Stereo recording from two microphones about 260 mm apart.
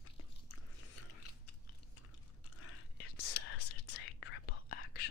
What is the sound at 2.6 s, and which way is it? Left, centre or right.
Whispering, left.